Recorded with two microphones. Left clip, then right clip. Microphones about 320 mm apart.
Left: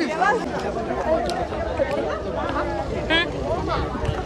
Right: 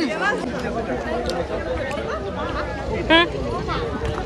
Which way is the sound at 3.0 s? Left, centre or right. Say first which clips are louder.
Right 6 dB; centre.